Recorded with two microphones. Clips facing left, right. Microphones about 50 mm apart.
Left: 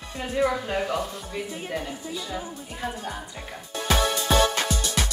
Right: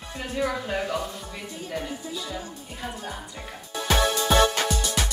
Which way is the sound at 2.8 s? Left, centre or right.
Centre.